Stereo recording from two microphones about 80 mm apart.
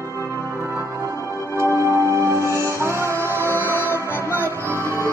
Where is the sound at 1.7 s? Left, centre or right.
Right.